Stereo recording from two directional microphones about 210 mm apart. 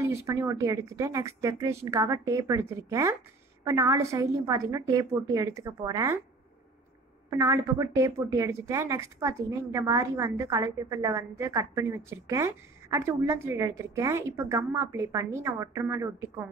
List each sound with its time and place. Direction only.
0.0 s a woman's voice: 15° right (ahead or behind)
7.2 s a woman's voice: 15° right (ahead or behind)